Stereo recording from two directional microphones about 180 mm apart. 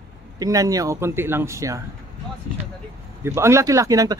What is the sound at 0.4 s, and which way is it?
A man's voice, 20° right (ahead or behind).